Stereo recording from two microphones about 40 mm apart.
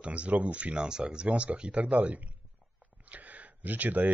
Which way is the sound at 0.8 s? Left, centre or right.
Right.